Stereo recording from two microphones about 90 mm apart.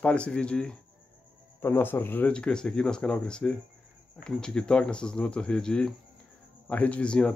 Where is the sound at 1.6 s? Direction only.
25° left (ahead or behind).